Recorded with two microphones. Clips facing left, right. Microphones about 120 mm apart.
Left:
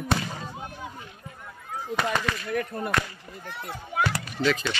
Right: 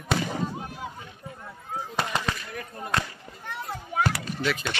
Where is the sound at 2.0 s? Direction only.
30° right (ahead or behind).